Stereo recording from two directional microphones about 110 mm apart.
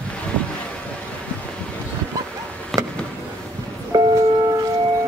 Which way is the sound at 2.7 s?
Centre (ahead or behind).